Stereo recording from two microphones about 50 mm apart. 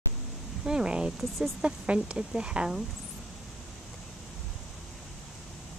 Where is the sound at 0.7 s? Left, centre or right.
Centre.